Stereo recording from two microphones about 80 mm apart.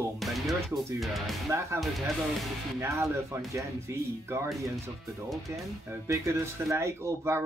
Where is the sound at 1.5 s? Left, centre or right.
Right.